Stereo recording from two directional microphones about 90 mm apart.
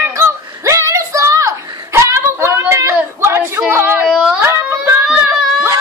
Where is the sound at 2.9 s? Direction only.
25° right (ahead or behind).